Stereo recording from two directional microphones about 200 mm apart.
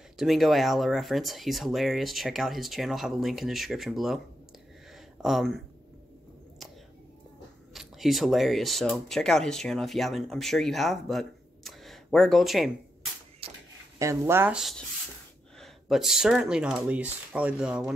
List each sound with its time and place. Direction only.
0.2 s speech: centre (ahead or behind)
5.2 s speech: centre (ahead or behind)
7.7 s speech: centre (ahead or behind)
13.4 s a sound: 30° right (ahead or behind)
13.9 s speech: 15° right (ahead or behind)